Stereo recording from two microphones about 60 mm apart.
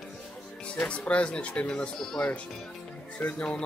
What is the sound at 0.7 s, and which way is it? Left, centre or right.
Speech, left.